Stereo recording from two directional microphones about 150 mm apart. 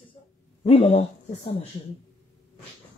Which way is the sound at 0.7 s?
40° left (ahead or behind).